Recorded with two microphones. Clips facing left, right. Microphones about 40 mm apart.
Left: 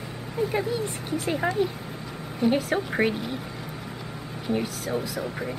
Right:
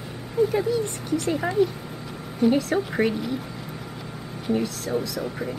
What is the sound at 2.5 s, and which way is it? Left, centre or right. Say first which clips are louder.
Speech: right 2 dB; centre.